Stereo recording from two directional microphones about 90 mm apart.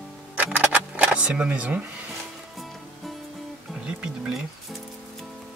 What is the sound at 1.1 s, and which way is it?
Speech, 15° right (ahead or behind).